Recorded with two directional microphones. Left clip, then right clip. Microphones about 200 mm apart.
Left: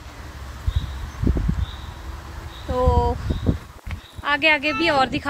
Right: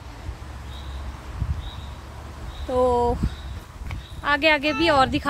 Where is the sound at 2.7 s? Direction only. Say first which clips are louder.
Right 1 dB; 20° right (ahead or behind).